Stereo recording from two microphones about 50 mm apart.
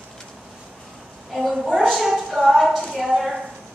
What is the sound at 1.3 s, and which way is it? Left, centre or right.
A woman's voice, centre.